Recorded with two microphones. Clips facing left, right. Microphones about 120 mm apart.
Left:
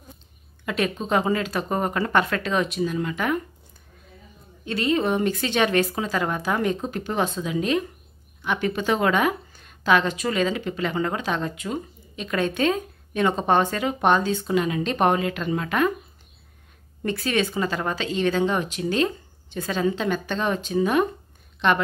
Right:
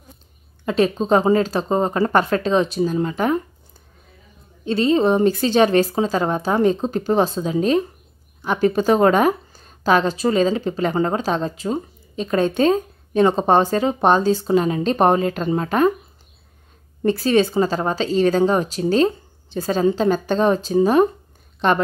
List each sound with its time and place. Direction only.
0.7 s speech: 30° right (ahead or behind)
4.6 s speech: 30° right (ahead or behind)
17.0 s speech: 30° right (ahead or behind)